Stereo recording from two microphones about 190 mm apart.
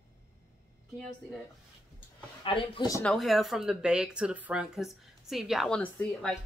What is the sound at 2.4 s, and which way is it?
Speech, 25° left (ahead or behind).